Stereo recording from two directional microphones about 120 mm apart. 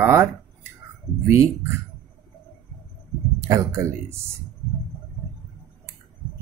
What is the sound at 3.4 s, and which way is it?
Speech, 25° right (ahead or behind).